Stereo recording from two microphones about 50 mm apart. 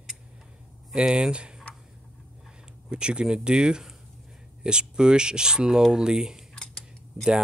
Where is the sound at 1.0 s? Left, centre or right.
Centre.